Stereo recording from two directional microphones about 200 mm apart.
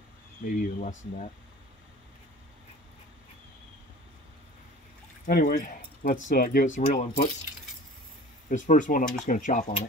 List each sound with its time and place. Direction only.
0.5 s speech: 45° left (ahead or behind)
5.2 s speech: 40° left (ahead or behind)
8.5 s speech: 40° left (ahead or behind)